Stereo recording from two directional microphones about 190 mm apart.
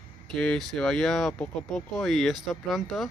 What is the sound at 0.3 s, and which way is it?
Speech, centre (ahead or behind).